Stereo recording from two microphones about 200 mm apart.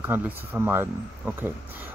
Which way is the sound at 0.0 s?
10° right (ahead or behind).